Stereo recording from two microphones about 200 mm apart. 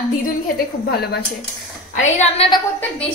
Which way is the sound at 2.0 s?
35° left (ahead or behind).